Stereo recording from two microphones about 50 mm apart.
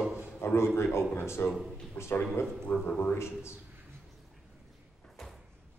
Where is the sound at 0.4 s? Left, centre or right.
Left.